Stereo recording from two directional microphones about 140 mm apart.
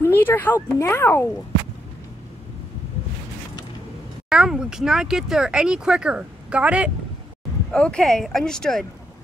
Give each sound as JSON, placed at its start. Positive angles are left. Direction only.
{"t": 0.0, "sound": "speech", "side_deg": 15}
{"t": 4.3, "sound": "speech", "side_deg": -5}
{"t": 7.7, "sound": "speech", "side_deg": 5}